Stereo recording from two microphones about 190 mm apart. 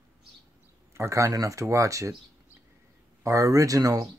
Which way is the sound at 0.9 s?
15° right (ahead or behind).